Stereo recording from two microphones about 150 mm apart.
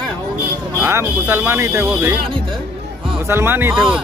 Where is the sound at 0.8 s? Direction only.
15° right (ahead or behind).